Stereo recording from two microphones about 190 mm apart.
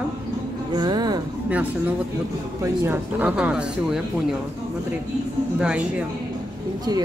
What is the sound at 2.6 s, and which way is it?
Speech, 10° right (ahead or behind).